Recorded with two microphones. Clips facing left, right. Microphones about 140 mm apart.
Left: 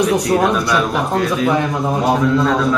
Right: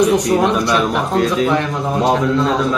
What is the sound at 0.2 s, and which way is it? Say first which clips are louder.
A man's voice: even; 20° right (ahead or behind).